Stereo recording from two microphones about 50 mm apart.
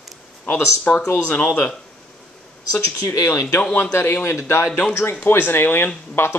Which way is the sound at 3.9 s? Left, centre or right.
Left.